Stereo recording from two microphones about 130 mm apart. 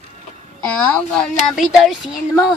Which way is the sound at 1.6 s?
Centre (ahead or behind).